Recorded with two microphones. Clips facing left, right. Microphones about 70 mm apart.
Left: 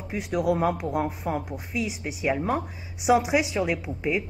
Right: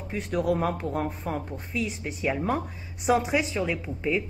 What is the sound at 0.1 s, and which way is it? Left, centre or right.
A woman's voice, centre.